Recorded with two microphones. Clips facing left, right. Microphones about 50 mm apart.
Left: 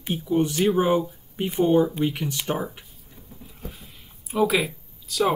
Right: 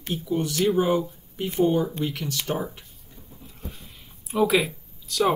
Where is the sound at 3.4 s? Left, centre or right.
Centre.